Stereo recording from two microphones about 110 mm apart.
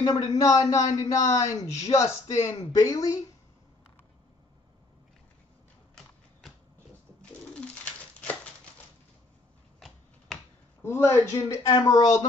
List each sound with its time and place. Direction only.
0.0 s a man's voice: 40° left (ahead or behind)
7.2 s bird: 10° left (ahead or behind)
9.8 s a sound: centre (ahead or behind)
10.8 s a woman's voice: 20° left (ahead or behind)